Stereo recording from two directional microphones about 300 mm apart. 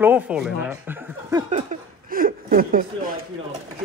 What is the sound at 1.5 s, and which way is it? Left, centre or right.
Chuckle, right.